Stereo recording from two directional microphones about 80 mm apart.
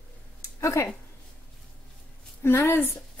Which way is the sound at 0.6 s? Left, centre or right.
Left.